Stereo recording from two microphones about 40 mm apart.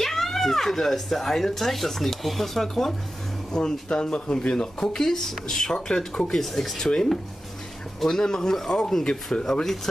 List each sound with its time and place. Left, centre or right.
0.0 s speech: centre
3.5 s speech: centre
4.7 s speech: centre
6.4 s speech: centre
8.0 s speech: centre